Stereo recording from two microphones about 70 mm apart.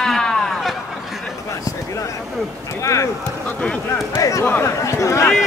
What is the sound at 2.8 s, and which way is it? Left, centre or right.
Speech, left.